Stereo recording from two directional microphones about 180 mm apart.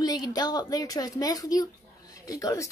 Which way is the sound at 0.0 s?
20° left (ahead or behind).